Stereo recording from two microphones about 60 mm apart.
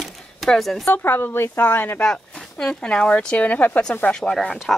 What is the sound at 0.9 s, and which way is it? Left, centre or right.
Speech, left.